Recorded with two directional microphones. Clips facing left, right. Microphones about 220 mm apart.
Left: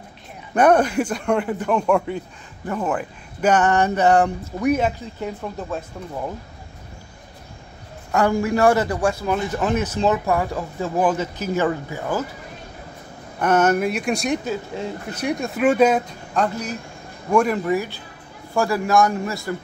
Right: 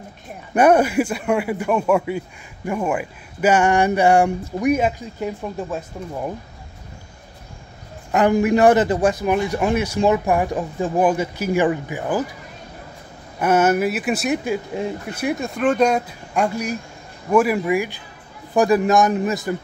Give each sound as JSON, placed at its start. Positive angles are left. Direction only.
{"t": 0.6, "sound": "speech", "side_deg": -10}
{"t": 8.1, "sound": "speech", "side_deg": -20}
{"t": 13.4, "sound": "speech", "side_deg": -10}
{"t": 16.3, "sound": "a man's voice", "side_deg": -10}